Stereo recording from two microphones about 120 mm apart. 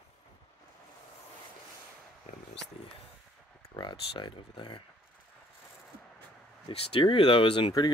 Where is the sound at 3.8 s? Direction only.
40° left (ahead or behind).